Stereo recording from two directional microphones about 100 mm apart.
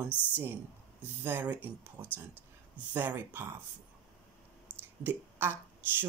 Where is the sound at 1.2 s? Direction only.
20° right (ahead or behind).